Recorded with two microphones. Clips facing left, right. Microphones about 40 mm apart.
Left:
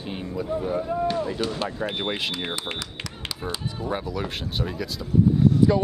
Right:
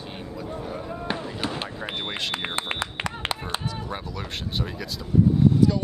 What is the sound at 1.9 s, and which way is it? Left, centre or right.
Speech, centre.